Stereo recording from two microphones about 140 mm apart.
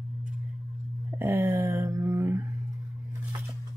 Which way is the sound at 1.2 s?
15° right (ahead or behind).